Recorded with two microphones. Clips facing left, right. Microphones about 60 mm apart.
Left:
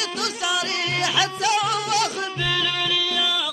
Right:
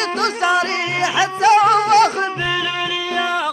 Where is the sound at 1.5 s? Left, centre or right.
Right.